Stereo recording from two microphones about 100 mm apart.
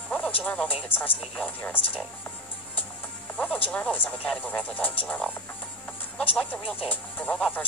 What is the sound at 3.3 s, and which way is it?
Speech, 15° left (ahead or behind).